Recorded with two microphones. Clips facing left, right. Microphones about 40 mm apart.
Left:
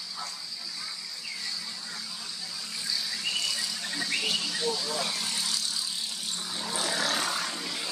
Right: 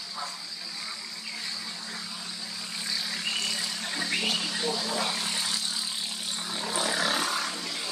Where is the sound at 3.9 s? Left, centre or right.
Centre.